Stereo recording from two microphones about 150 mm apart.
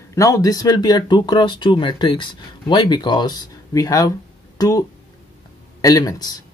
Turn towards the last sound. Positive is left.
turn(degrees=25)  # may be behind; listen again after turning